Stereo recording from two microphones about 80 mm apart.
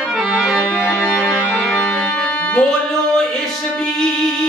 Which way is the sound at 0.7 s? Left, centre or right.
Centre.